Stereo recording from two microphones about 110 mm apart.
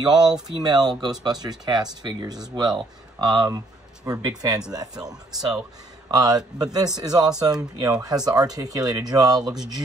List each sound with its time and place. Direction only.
0.0 s speech: 40° right (ahead or behind)